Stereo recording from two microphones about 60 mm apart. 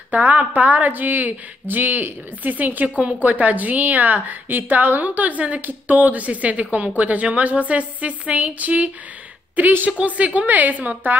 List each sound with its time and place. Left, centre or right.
0.1 s a woman's voice: right
9.8 s a woman's voice: right